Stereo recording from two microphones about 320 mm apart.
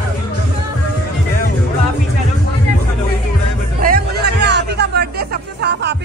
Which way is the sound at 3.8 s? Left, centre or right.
Right.